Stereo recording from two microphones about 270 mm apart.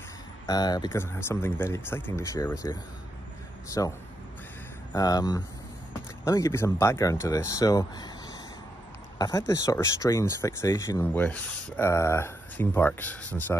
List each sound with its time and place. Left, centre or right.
0.5 s speech: centre
4.9 s speech: centre